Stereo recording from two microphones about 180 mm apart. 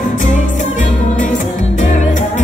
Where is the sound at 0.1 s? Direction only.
45° left (ahead or behind).